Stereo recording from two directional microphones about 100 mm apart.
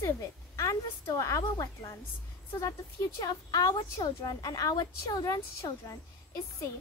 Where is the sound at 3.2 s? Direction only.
40° left (ahead or behind).